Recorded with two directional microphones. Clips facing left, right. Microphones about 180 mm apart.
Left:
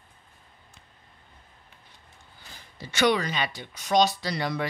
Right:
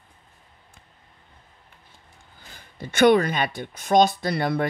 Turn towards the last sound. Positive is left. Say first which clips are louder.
# right 5 dB
turn(degrees=-55)  # may be behind; listen again after turning